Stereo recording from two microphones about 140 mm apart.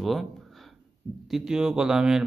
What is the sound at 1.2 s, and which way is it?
Speech, 5° right (ahead or behind).